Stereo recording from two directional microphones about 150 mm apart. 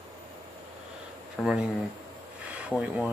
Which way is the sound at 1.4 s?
5° right (ahead or behind).